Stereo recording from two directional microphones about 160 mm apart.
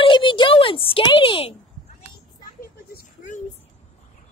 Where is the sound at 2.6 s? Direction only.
60° left (ahead or behind).